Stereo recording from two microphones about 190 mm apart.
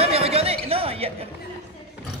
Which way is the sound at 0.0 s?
30° right (ahead or behind).